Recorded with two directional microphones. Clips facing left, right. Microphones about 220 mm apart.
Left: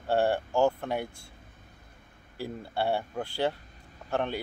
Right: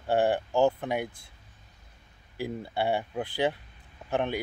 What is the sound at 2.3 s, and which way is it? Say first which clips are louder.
Speech: right 2 dB; 15° right (ahead or behind).